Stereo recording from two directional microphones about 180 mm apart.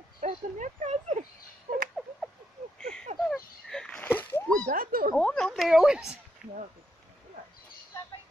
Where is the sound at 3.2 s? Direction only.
5° left (ahead or behind).